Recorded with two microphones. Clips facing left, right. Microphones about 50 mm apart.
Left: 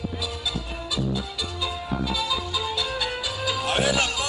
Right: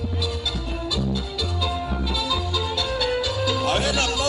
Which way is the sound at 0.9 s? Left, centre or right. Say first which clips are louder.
Even; centre.